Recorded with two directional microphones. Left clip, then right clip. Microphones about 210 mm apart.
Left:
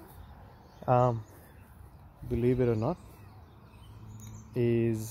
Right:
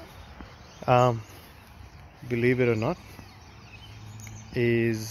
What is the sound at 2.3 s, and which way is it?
Speech, 5° left (ahead or behind).